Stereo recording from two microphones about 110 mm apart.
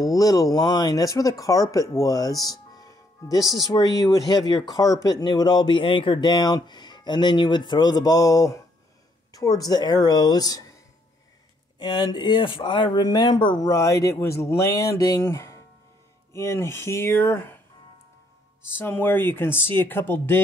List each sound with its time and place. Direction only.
0.0 s speech: 35° left (ahead or behind); by 6.3 s 50° left (ahead or behind)
6.3 s speech: 40° left (ahead or behind)
11.8 s speech: 45° left (ahead or behind)
13.7 s speech: 30° left (ahead or behind)
18.6 s speech: 20° left (ahead or behind)